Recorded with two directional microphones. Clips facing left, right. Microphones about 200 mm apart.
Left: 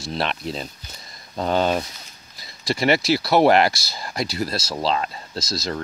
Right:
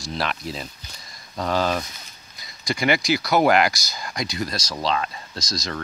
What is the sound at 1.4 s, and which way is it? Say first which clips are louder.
Speech: left 2 dB; 30° left (ahead or behind).